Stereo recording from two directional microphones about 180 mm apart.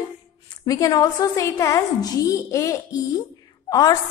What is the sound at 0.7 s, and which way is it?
A woman's voice, 20° left (ahead or behind).